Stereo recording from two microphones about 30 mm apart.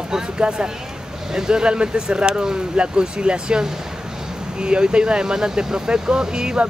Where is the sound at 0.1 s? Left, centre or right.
Right.